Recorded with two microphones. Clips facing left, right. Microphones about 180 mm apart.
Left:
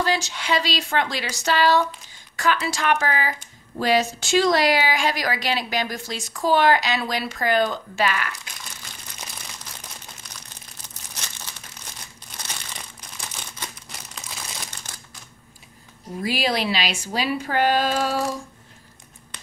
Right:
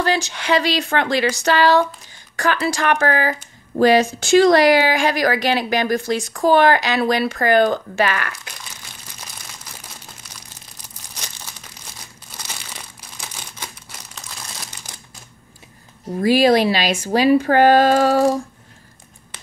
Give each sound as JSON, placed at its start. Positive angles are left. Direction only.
{"t": 0.0, "sound": "speech", "side_deg": -60}
{"t": 13.8, "sound": "crumpling", "side_deg": -5}
{"t": 16.2, "sound": "speech", "side_deg": -45}